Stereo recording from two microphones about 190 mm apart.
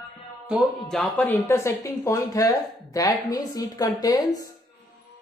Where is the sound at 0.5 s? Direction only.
Centre (ahead or behind); by 4.5 s 20° left (ahead or behind).